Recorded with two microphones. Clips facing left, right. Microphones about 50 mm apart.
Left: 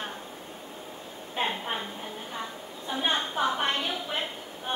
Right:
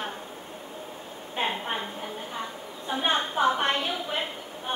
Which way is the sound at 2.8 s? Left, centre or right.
Centre.